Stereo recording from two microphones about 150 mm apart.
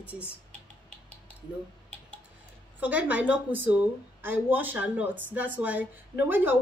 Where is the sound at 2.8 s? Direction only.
10° right (ahead or behind).